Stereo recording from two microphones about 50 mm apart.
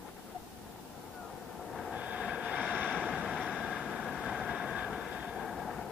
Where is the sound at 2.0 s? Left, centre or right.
Right.